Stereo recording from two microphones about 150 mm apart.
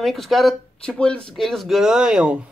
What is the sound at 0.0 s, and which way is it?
Speech, centre (ahead or behind).